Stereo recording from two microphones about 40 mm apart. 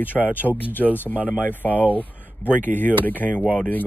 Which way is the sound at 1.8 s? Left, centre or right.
Left.